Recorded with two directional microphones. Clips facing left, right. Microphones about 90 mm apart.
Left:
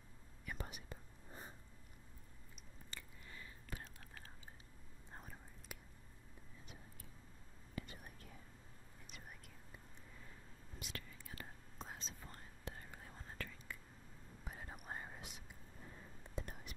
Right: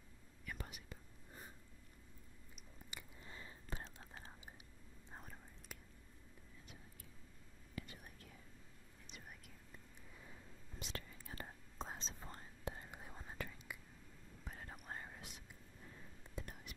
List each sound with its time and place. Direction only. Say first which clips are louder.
0.5 s whispering: left 2 dB; 30° left (ahead or behind)
2.9 s whispering: right 1 dB; 20° right (ahead or behind)
5.1 s whispering: even; centre (ahead or behind)
7.8 s whispering: left 2 dB; 35° left (ahead or behind)
10.8 s whispering: right 2 dB; 30° right (ahead or behind)
14.4 s whispering: left 1 dB; 10° left (ahead or behind); by 16.7 s 30° left (ahead or behind)